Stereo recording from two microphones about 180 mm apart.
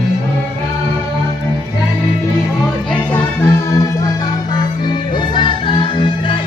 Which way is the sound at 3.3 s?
15° left (ahead or behind).